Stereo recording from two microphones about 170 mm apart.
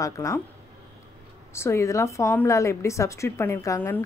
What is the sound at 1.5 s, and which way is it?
Speech, 15° left (ahead or behind).